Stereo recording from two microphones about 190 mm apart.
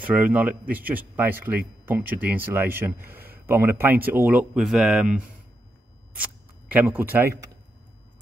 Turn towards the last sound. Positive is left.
turn(degrees=-10)  # may be behind; listen again after turning